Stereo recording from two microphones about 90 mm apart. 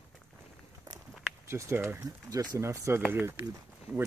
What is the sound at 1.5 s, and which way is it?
Speech, 30° right (ahead or behind).